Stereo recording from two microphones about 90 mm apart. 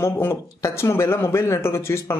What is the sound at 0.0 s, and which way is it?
Speech, 25° left (ahead or behind).